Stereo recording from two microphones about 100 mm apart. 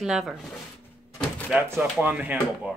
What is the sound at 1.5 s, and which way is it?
Speech, 25° right (ahead or behind).